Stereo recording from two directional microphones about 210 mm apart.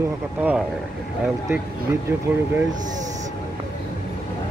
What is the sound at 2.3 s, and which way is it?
Speech, 10° right (ahead or behind).